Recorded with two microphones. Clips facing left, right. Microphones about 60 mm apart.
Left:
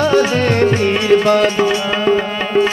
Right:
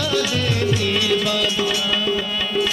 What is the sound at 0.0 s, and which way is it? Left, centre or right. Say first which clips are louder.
Music: left 8 dB; left.